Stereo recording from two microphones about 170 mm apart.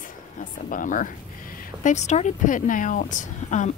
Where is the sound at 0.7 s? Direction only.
50° left (ahead or behind).